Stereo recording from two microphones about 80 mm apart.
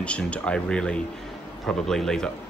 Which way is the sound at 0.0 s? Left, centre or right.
Centre.